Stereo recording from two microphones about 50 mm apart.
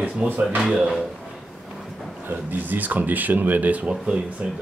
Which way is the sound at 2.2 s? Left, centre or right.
Right.